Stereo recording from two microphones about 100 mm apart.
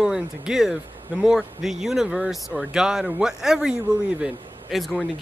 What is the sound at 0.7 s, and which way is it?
Speech, 20° right (ahead or behind).